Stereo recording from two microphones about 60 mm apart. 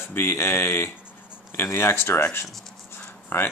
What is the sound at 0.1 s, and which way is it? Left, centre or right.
Speech, left.